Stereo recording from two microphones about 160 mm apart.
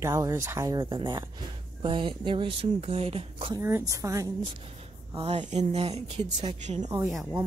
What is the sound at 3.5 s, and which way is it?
Speech, 15° right (ahead or behind).